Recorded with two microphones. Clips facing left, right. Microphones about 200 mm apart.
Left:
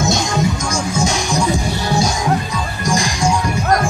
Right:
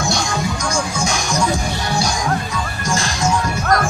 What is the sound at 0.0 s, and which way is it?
Music, 20° left (ahead or behind).